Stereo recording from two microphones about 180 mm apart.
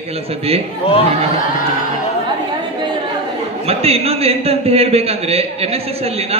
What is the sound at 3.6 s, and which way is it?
A man's voice, 35° right (ahead or behind).